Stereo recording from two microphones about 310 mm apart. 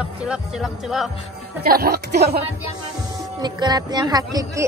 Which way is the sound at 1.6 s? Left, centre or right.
Right.